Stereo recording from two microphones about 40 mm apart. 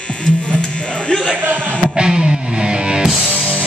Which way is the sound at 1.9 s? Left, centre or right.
Right.